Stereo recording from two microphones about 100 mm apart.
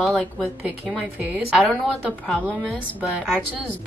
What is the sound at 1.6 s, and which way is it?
A woman's voice, 10° left (ahead or behind).